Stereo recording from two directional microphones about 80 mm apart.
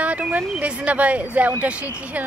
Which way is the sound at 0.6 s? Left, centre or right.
Centre.